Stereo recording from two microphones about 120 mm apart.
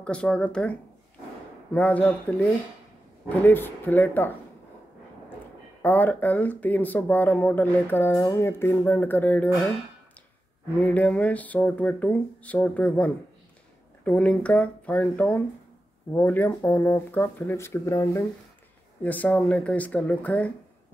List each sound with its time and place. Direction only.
0.0 s speech: 10° left (ahead or behind)
5.8 s speech: 15° left (ahead or behind)
10.8 s speech: 10° left (ahead or behind)